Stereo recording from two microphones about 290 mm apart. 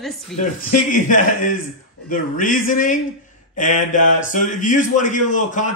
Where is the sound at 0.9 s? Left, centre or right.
Left.